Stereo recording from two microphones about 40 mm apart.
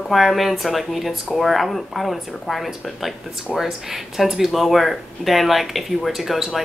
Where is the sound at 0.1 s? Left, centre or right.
Centre.